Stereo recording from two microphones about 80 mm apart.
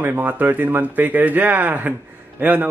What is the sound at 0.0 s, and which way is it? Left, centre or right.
A man's voice, right.